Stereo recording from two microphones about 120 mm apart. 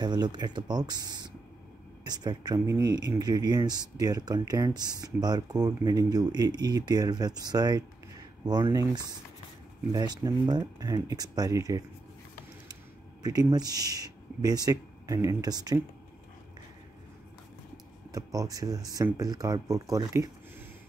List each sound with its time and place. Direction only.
0.0 s speech: 35° right (ahead or behind)
9.9 s speech: 35° right (ahead or behind)
13.2 s speech: 35° right (ahead or behind)
18.1 s speech: 30° right (ahead or behind)